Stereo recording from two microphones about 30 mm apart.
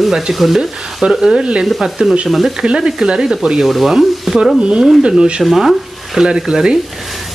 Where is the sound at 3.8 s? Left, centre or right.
Centre.